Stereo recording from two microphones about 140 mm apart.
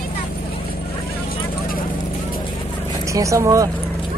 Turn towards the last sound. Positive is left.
turn(degrees=-20)  # may be behind; listen again after turning